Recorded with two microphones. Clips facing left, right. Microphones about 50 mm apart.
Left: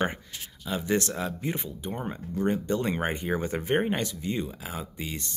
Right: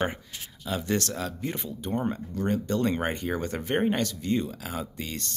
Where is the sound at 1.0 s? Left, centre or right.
Centre.